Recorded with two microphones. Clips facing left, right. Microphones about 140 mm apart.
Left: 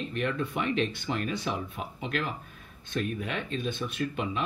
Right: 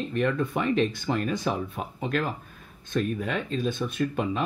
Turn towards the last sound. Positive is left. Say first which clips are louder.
# right 4 dB
turn(degrees=-45)  # may be behind; listen again after turning